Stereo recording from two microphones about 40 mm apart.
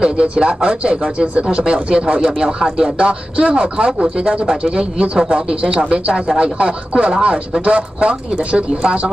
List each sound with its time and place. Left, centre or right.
0.0 s speech: right